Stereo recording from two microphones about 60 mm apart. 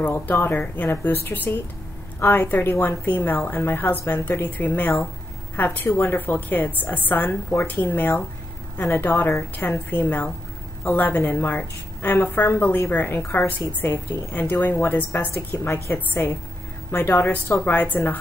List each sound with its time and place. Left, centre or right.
0.1 s a woman's voice: left